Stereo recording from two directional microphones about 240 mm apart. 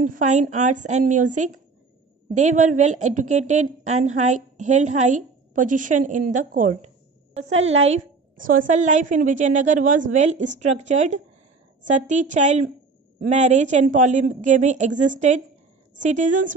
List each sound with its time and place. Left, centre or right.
0.0 s a woman's voice: right